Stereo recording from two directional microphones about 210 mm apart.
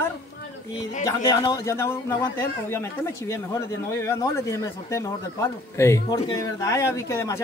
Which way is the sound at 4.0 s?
15° left (ahead or behind).